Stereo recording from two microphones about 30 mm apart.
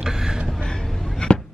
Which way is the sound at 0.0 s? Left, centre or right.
Centre.